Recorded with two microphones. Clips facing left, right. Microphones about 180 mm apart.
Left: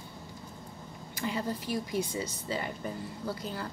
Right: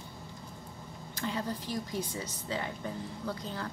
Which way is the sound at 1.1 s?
10° left (ahead or behind).